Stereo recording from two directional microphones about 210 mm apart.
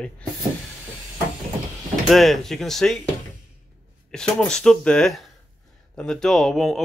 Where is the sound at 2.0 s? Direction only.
Centre (ahead or behind).